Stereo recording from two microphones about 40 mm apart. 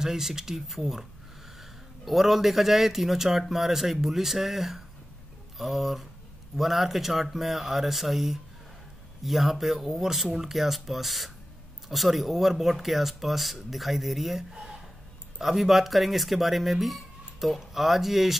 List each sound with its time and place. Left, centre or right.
0.0 s a man's voice: centre
14.5 s a sound: centre
15.4 s speech: centre